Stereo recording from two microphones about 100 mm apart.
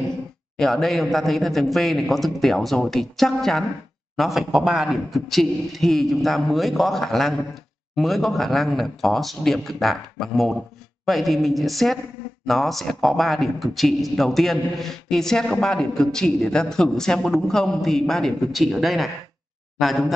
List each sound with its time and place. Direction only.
0.6 s a man's voice: 5° left (ahead or behind)